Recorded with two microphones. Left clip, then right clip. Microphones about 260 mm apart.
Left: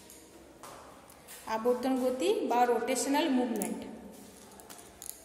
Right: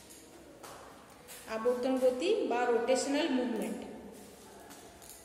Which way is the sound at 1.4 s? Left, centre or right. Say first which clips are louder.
Left 2 dB; left.